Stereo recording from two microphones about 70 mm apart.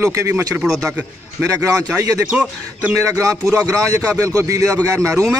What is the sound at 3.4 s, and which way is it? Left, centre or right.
Speech, right.